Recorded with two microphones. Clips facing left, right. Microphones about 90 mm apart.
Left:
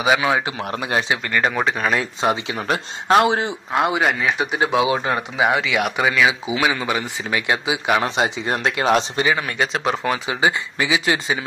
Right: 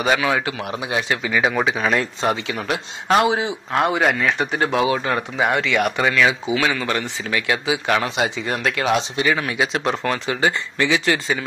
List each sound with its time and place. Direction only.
0.0 s speech: 5° left (ahead or behind)
0.7 s a man's voice: 55° left (ahead or behind)
1.2 s speech: centre (ahead or behind)
2.2 s speech: 25° left (ahead or behind)
3.1 s speech: centre (ahead or behind)
8.0 s speech: 30° left (ahead or behind)
8.8 s speech: 40° left (ahead or behind)
9.2 s speech: 5° left (ahead or behind)